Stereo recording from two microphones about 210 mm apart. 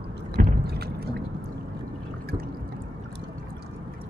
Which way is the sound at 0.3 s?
45° right (ahead or behind).